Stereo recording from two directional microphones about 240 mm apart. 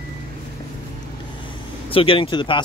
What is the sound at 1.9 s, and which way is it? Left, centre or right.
Speech, left.